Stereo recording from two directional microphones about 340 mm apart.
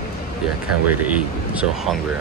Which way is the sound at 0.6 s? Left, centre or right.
Centre.